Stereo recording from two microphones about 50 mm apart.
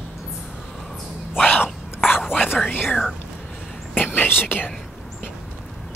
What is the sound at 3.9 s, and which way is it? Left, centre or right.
Whispering, left.